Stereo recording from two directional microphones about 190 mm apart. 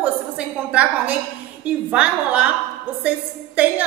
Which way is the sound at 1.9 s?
5° right (ahead or behind).